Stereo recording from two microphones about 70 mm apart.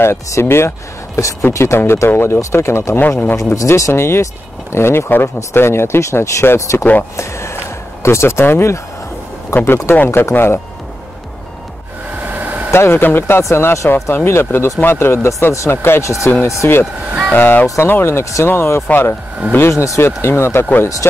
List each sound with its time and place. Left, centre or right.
0.0 s speech: left
3.0 s speech: left
3.5 s speech: left
3.9 s speech: left
6.8 s speech: left
7.2 s speech: left
12.2 s hair dryer: right
12.7 s speech: left
17.3 s speech: left